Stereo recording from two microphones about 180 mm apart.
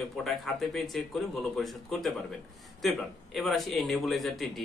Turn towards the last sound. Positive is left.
turn(degrees=0)  # may be behind; listen again after turning